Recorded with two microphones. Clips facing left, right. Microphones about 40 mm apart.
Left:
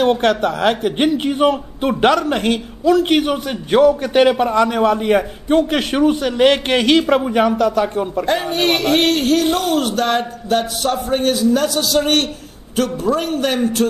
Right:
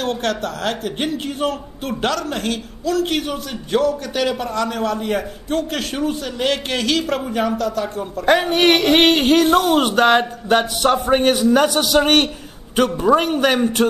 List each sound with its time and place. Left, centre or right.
0.0 s a man's voice: centre
4.0 s a man's voice: left
8.3 s a man's voice: right
8.7 s a man's voice: right
9.4 s speech: centre
9.8 s a man's voice: right